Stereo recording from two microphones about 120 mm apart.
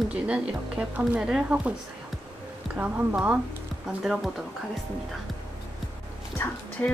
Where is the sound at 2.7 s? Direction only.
10° right (ahead or behind).